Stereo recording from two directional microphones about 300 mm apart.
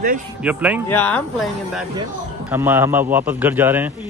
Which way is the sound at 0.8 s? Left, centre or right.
Centre.